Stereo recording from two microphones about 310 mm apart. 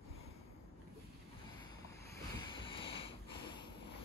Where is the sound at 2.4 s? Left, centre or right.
Centre.